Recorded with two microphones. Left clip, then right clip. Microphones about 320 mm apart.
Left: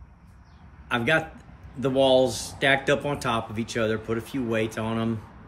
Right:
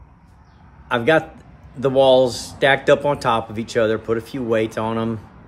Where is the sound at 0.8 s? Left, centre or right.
Centre.